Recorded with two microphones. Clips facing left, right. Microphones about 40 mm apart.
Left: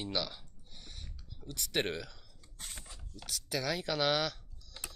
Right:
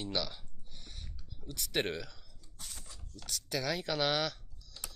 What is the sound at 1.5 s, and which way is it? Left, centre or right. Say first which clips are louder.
Speech: even; centre.